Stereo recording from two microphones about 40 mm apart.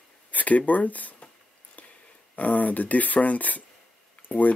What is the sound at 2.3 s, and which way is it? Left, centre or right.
Cutlery, left.